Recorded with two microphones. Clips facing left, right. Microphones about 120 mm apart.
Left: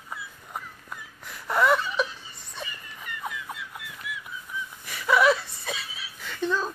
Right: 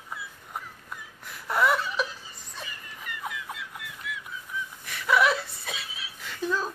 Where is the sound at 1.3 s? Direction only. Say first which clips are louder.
Left 2 dB; centre (ahead or behind).